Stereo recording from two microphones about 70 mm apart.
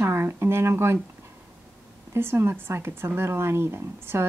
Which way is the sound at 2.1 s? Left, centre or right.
Right.